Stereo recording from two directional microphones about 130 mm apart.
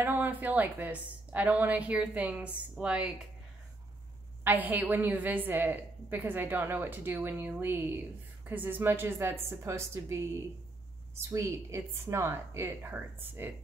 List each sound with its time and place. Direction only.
0.0 s a woman's voice: 15° right (ahead or behind)
4.5 s a woman's voice: 15° right (ahead or behind)